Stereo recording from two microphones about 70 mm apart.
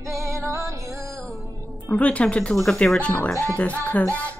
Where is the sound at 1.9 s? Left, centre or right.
Centre.